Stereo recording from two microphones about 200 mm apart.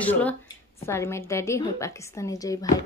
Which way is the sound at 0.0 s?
5° left (ahead or behind).